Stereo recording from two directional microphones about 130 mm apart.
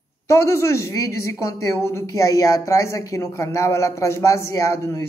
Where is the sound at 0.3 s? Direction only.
20° left (ahead or behind).